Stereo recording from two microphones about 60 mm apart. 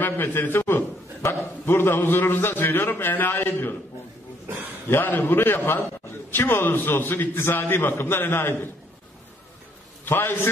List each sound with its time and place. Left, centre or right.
0.0 s a man's voice: left
4.5 s a man's voice: right
4.8 s a man's voice: left
10.0 s a man's voice: left